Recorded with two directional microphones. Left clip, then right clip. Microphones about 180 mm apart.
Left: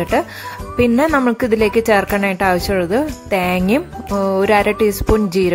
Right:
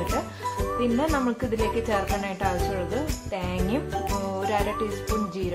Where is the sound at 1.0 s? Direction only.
40° left (ahead or behind).